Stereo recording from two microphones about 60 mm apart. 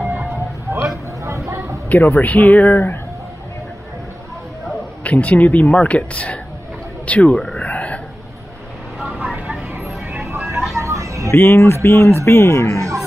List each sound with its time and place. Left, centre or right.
0.0 s a sound: right
1.9 s speech: left
5.0 s speech: left
7.3 s speech: centre
7.6 s a sound: left
9.0 s vehicle: centre
10.3 s vehicle: right
10.8 s a sound: right
11.3 s speech: left
12.7 s music: right